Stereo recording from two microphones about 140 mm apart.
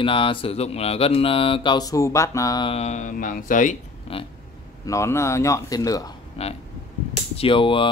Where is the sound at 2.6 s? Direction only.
50° left (ahead or behind); by 3.7 s 70° left (ahead or behind).